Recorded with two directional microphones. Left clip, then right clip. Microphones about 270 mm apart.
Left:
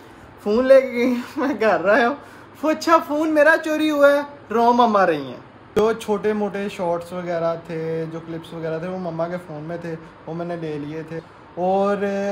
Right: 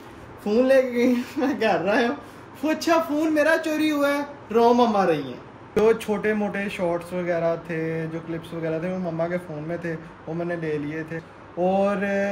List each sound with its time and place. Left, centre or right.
0.5 s speech: centre